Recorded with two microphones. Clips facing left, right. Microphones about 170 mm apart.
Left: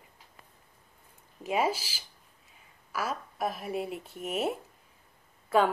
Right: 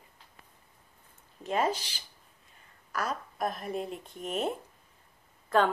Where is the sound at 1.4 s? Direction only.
10° left (ahead or behind).